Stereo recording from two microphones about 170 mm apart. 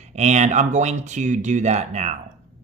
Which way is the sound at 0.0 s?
40° right (ahead or behind).